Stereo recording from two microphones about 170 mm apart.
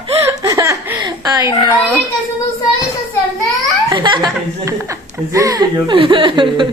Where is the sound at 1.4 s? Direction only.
25° left (ahead or behind).